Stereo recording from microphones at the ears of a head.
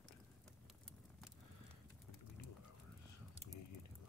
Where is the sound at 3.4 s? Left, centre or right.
Left.